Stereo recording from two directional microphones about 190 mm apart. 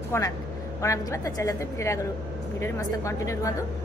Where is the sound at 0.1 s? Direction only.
15° left (ahead or behind).